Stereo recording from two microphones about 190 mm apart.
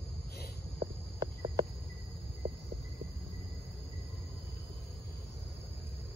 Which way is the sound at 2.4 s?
30° right (ahead or behind).